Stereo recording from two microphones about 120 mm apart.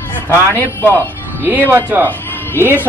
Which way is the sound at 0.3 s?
15° left (ahead or behind).